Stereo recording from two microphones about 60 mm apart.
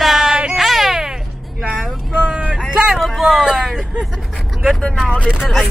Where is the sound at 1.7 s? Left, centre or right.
Centre.